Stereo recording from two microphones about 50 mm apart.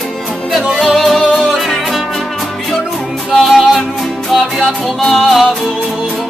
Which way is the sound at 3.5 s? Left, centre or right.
Centre.